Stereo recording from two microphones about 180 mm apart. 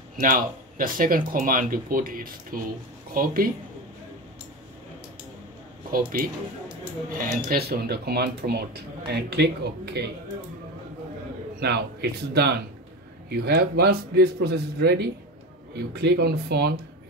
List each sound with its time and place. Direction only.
0.2 s speech: 50° right (ahead or behind)
5.9 s speech: 50° right (ahead or behind); by 10.3 s 70° right (ahead or behind)
11.6 s speech: 65° right (ahead or behind)